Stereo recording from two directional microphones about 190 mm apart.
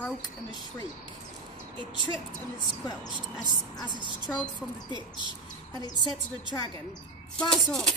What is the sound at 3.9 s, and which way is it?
A woman's voice, 25° right (ahead or behind).